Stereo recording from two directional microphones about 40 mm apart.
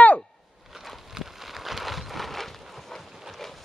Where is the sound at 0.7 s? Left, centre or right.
Centre.